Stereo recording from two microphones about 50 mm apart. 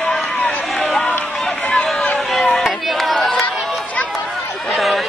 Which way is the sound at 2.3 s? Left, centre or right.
Centre.